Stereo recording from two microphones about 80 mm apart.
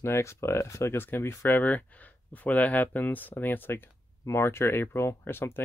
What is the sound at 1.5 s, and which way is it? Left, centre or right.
Speech, left.